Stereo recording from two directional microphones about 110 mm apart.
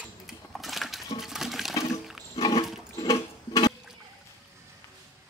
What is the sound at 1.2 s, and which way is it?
Water, 5° right (ahead or behind).